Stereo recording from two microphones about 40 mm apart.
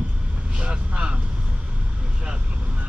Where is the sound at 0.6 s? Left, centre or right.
Right.